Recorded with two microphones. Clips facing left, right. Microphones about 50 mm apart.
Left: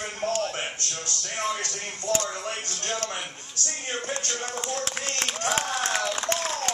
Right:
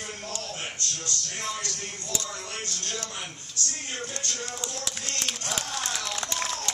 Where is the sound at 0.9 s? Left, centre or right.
Left.